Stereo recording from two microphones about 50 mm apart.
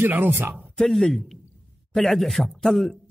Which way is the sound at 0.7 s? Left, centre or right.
Centre.